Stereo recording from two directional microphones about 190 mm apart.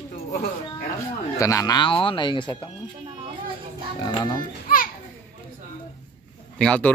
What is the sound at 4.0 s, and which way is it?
Speech, 20° left (ahead or behind).